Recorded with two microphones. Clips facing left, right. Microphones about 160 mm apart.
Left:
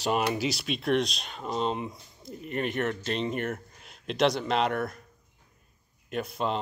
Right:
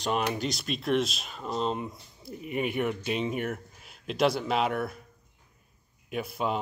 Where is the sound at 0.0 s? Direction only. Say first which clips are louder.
Left 2 dB; 5° left (ahead or behind).